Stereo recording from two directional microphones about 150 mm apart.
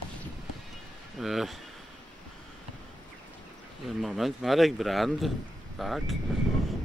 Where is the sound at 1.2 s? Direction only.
Centre (ahead or behind).